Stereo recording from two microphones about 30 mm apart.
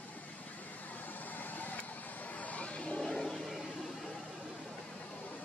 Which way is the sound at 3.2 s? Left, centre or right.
Centre.